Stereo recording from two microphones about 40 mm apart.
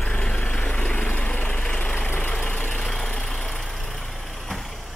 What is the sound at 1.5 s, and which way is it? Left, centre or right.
Vehicle, left.